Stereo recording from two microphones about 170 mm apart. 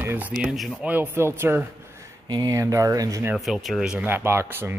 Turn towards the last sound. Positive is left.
turn(degrees=-15)  # may be behind; listen again after turning